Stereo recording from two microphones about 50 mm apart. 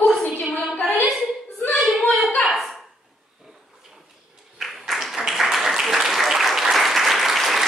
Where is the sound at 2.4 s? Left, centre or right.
Centre.